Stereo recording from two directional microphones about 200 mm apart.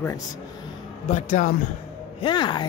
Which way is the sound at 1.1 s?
40° left (ahead or behind).